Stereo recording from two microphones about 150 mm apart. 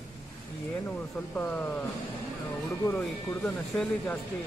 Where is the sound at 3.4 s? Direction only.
5° left (ahead or behind).